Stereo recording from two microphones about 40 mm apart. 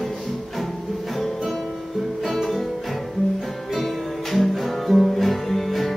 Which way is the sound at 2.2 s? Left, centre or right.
Centre.